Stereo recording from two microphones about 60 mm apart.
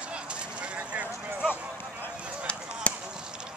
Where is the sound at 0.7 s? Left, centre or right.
Right.